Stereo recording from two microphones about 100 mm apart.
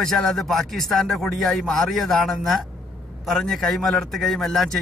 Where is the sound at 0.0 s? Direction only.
5° left (ahead or behind).